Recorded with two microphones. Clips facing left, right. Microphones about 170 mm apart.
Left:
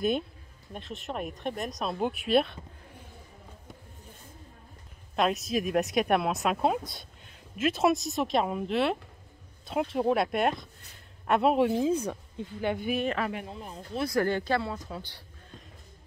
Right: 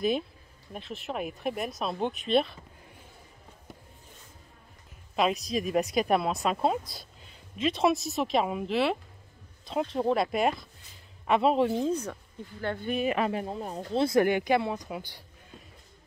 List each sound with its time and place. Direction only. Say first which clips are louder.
0.7 s speech: right 1 dB; centre (ahead or behind)
5.1 s a woman's voice: even; centre (ahead or behind)
13.3 s speech: right 5 dB; 35° right (ahead or behind)
13.9 s speech: right 4 dB; 25° right (ahead or behind)